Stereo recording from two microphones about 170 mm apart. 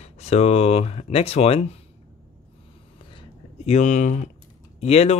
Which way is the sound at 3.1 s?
40° left (ahead or behind).